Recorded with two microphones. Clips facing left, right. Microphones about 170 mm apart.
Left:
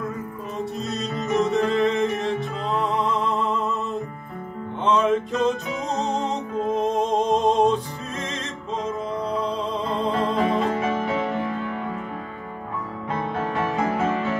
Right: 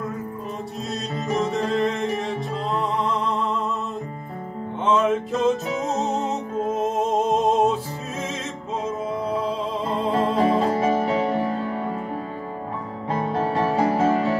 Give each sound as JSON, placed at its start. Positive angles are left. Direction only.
{"t": 1.3, "sound": "music", "side_deg": 0}
{"t": 4.8, "sound": "music", "side_deg": 0}
{"t": 10.3, "sound": "music", "side_deg": -35}
{"t": 13.1, "sound": "music", "side_deg": -35}